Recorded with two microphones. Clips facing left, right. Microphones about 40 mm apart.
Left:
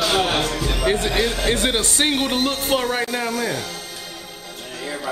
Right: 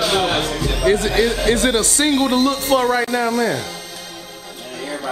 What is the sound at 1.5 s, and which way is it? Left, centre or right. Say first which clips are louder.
Speech: right 3 dB; left.